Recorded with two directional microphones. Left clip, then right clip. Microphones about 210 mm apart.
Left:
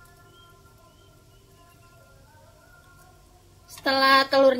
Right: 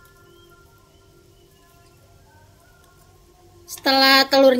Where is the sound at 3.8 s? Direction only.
45° right (ahead or behind).